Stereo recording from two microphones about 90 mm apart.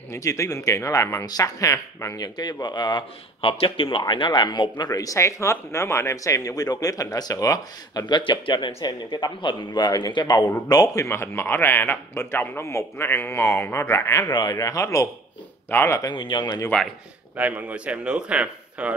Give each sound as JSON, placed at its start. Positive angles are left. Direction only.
{"t": 0.1, "sound": "speech", "side_deg": 35}
{"t": 2.1, "sound": "speech", "side_deg": 50}
{"t": 4.1, "sound": "speech", "side_deg": 65}
{"t": 4.9, "sound": "speech", "side_deg": 40}
{"t": 11.1, "sound": "a man's voice", "side_deg": 30}
{"t": 14.3, "sound": "speech", "side_deg": 50}
{"t": 15.7, "sound": "a man's voice", "side_deg": 25}
{"t": 16.1, "sound": "speech", "side_deg": 60}
{"t": 17.4, "sound": "speech", "side_deg": -15}